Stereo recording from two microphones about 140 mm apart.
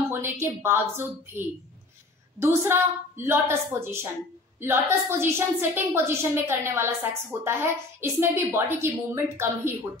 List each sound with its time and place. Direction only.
0.1 s a woman's voice: 15° right (ahead or behind)